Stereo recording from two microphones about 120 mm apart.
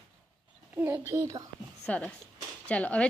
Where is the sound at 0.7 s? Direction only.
15° right (ahead or behind).